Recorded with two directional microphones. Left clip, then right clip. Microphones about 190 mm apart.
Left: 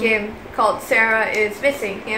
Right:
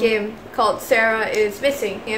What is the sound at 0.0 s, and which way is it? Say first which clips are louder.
A woman's voice: even; 20° right (ahead or behind).